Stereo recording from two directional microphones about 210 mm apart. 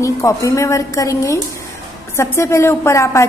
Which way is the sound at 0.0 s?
15° left (ahead or behind).